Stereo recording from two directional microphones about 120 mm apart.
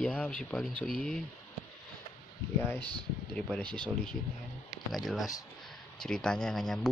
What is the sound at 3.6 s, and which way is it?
Speech, 40° right (ahead or behind).